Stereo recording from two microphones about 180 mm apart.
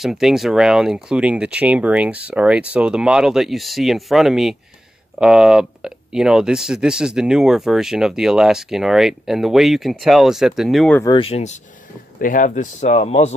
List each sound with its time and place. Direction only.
0.0 s speech: centre (ahead or behind)
11.1 s speech: 35° left (ahead or behind)
12.2 s speech: 50° left (ahead or behind)